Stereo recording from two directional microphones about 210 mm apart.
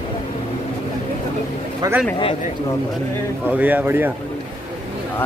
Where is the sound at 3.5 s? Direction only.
10° right (ahead or behind).